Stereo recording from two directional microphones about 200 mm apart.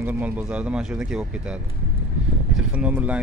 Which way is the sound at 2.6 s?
5° right (ahead or behind).